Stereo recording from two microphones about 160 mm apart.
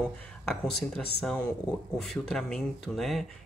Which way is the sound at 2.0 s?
Centre (ahead or behind).